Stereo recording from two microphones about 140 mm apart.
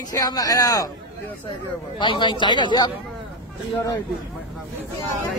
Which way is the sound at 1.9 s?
35° left (ahead or behind).